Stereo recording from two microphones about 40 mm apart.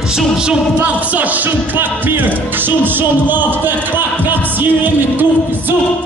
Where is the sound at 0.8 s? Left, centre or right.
Right.